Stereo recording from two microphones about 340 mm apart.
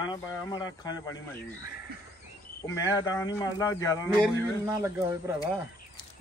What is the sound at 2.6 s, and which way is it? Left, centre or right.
Speech, centre.